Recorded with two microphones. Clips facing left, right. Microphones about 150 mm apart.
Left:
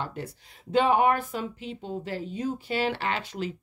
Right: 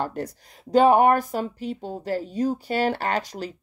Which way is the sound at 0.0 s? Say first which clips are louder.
Right 6 dB; 40° right (ahead or behind).